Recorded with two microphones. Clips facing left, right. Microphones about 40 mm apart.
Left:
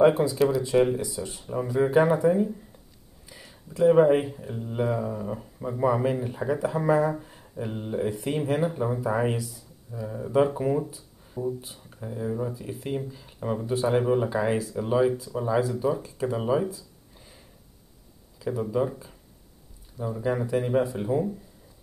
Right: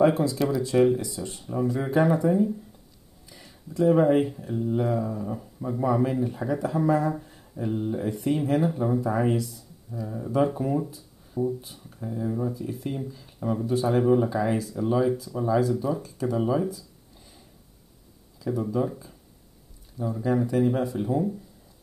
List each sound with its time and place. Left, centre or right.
0.0 s speech: centre
9.4 s speech: centre
18.4 s speech: centre
20.2 s speech: left